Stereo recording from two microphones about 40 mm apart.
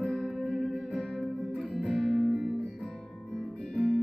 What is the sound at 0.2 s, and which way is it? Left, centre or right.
Music, centre.